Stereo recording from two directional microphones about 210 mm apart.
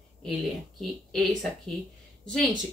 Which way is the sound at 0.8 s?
Centre (ahead or behind).